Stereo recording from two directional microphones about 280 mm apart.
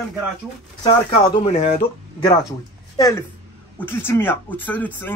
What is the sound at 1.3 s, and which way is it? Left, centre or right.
A man's voice, left.